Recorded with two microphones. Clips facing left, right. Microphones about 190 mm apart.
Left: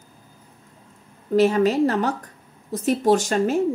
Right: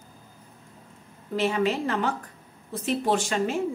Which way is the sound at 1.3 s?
40° left (ahead or behind).